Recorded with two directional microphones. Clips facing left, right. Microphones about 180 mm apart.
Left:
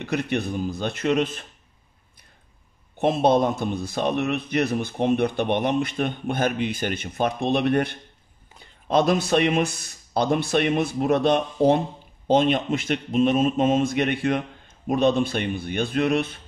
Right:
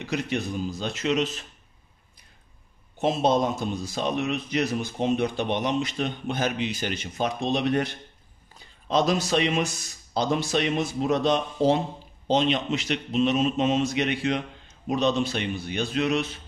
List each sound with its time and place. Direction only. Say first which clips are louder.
0.0 s speech: left 3 dB; 60° left (ahead or behind)
3.0 s speech: left 3 dB; 60° left (ahead or behind)